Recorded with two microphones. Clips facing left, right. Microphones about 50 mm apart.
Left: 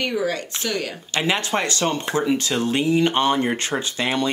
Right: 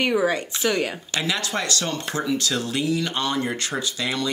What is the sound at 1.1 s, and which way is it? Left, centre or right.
Speech, left.